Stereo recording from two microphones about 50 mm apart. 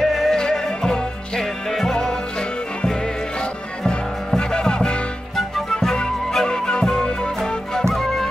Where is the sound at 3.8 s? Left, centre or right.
Centre.